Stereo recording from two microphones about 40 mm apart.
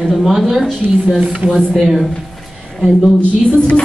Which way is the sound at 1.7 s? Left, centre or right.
Centre.